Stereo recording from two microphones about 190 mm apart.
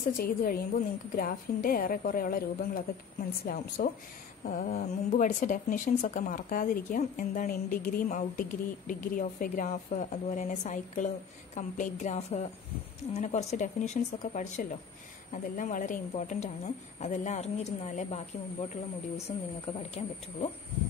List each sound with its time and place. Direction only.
0.2 s speech: 50° left (ahead or behind); by 20.5 s 30° left (ahead or behind)